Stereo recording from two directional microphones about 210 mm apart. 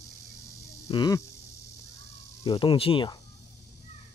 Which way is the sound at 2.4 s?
25° left (ahead or behind).